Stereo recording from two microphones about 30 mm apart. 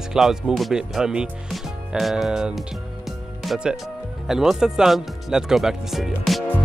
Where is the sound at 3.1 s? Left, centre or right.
Centre.